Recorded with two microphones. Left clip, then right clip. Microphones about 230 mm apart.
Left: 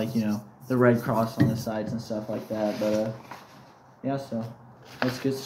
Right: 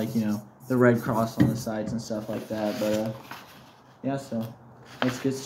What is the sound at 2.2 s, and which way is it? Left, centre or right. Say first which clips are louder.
Speech: left 2 dB; centre.